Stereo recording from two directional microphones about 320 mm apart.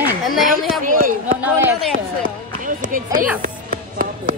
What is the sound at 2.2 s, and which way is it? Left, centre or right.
Run, right.